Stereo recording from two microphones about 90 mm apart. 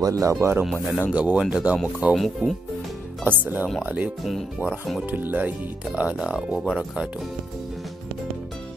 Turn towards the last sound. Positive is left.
turn(degrees=-10)  # may be behind; listen again after turning